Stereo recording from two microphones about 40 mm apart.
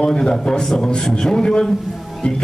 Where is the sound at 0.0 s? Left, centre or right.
Centre.